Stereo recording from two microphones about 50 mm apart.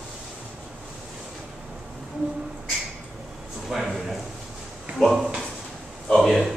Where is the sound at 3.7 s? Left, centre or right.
Centre.